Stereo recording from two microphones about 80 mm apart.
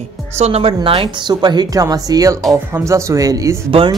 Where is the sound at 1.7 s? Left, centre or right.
Right.